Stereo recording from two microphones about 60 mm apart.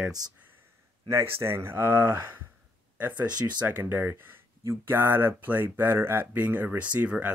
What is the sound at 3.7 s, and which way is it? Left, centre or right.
Speech, right.